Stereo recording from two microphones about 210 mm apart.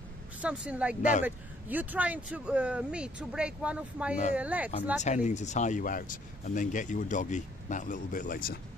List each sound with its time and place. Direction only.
0.4 s speech: 5° right (ahead or behind)
5.0 s speech: 35° left (ahead or behind)